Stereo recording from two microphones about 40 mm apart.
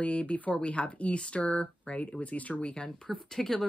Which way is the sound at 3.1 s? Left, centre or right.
Centre.